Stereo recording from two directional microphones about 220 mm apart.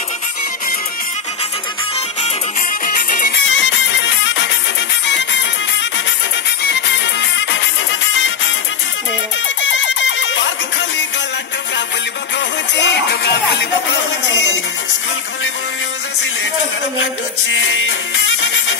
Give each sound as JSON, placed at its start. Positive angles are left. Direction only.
{"t": 2.8, "sound": "music", "side_deg": 40}
{"t": 3.4, "sound": "music", "side_deg": 55}
{"t": 6.6, "sound": "music", "side_deg": 50}
{"t": 9.6, "sound": "music", "side_deg": 55}
{"t": 12.4, "sound": "music", "side_deg": 50}
{"t": 17.0, "sound": "music", "side_deg": 60}